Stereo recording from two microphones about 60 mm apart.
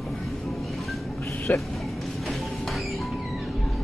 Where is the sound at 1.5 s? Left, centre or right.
Left.